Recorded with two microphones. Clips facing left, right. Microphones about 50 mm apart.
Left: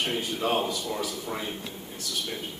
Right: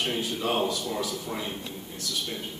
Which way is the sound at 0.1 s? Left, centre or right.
Centre.